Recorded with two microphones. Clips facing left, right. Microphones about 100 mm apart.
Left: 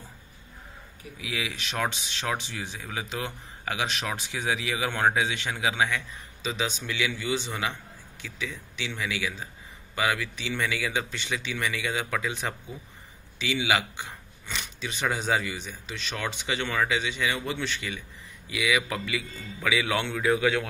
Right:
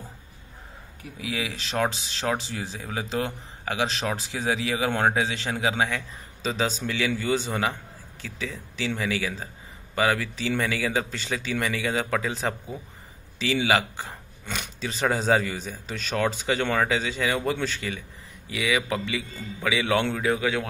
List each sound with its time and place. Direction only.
1.2 s a man's voice: 35° right (ahead or behind)
14.4 s a sound: 50° right (ahead or behind)
14.8 s a man's voice: 35° right (ahead or behind)